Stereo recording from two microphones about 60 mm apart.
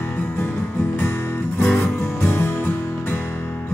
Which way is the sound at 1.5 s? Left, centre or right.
Centre.